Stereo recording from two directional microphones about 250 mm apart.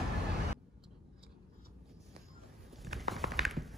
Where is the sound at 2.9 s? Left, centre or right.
Centre.